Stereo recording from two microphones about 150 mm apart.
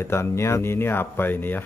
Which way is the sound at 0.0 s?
15° left (ahead or behind).